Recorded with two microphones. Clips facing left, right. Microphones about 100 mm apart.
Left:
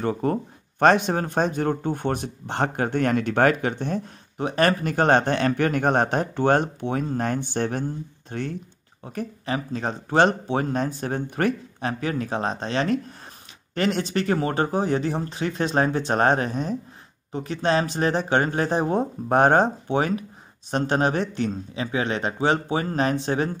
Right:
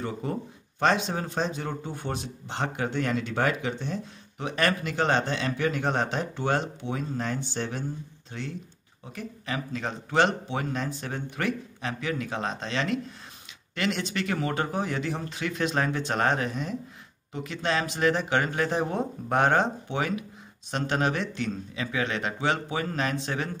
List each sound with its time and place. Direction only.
0.0 s speech: 55° left (ahead or behind)
4.4 s speech: 40° left (ahead or behind)
9.0 s speech: 35° left (ahead or behind)